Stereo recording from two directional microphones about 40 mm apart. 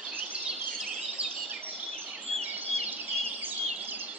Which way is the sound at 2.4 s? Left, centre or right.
Right.